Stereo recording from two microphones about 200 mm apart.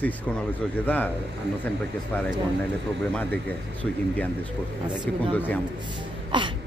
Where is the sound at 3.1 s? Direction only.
10° left (ahead or behind).